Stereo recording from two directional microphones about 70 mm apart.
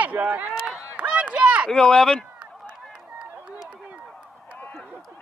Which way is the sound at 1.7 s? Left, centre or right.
Centre.